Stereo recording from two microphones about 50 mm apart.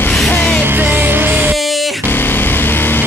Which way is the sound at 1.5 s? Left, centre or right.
Centre.